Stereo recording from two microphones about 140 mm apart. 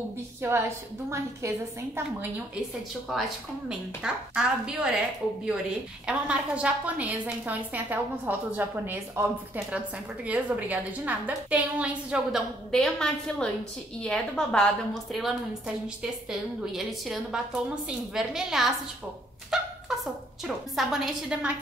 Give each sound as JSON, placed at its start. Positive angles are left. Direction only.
{"t": 0.4, "sound": "a woman's voice", "side_deg": -15}
{"t": 3.1, "sound": "a woman's voice", "side_deg": -5}
{"t": 6.0, "sound": "a woman's voice", "side_deg": -10}
{"t": 10.2, "sound": "a woman's voice", "side_deg": -10}
{"t": 19.5, "sound": "a sound", "side_deg": -5}
{"t": 20.4, "sound": "a woman's voice", "side_deg": 0}